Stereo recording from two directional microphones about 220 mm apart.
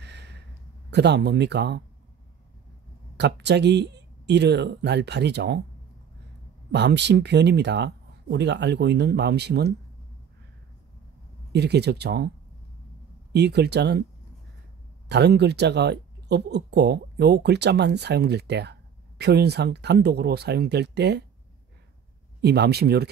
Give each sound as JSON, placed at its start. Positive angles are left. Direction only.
{"t": 0.0, "sound": "a sound", "side_deg": -50}
{"t": 0.8, "sound": "speech", "side_deg": -50}
{"t": 3.2, "sound": "speech", "side_deg": -50}
{"t": 6.7, "sound": "speech", "side_deg": -50}
{"t": 11.5, "sound": "speech", "side_deg": -50}
{"t": 13.3, "sound": "speech", "side_deg": -50}
{"t": 15.0, "sound": "speech", "side_deg": -50}
{"t": 22.4, "sound": "speech", "side_deg": -50}